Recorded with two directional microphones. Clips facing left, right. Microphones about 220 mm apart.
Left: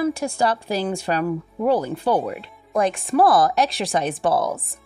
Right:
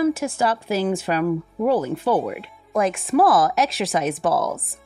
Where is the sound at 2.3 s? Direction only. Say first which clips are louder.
Even; centre (ahead or behind).